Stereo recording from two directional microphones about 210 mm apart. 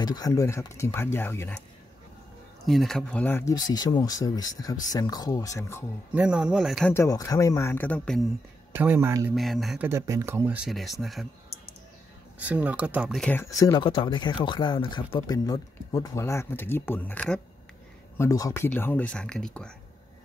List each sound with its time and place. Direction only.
0.0 s speech: 20° left (ahead or behind)
2.6 s speech: centre (ahead or behind)
6.1 s speech: 5° right (ahead or behind)
6.9 s speech: 15° left (ahead or behind)
8.7 s speech: 10° right (ahead or behind)
9.3 s speech: centre (ahead or behind)
12.4 s speech: 5° right (ahead or behind)
13.2 s speech: 10° left (ahead or behind)